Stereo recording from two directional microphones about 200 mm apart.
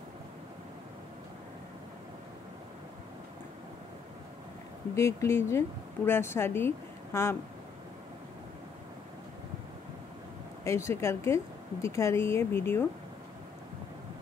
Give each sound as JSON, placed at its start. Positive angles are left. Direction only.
{"t": 4.9, "sound": "speech", "side_deg": 15}
{"t": 10.6, "sound": "speech", "side_deg": 15}